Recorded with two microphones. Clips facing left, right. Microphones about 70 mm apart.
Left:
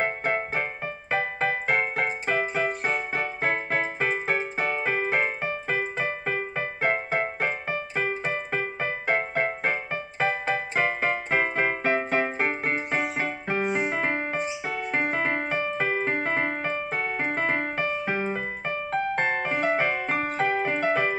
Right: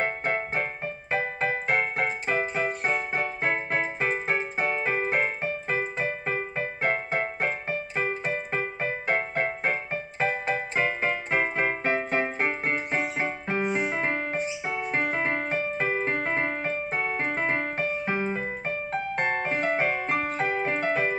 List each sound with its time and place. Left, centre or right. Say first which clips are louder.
0.0 s music: left 1 dB; left
1.1 s keyboard: left 1 dB; left
3.4 s music: left 2 dB; left
12.4 s keyboard: left 1 dB; left
14.0 s music: left 1 dB; left
15.8 s keyboard: left 1 dB; left
17.4 s music: left 1 dB; left
19.5 s music: left 2 dB; centre
20.1 s keyboard: left 1 dB; left
20.9 s music: left 1 dB; left